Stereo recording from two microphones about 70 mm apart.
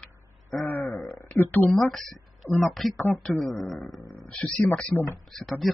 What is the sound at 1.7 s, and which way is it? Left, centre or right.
Speech, centre.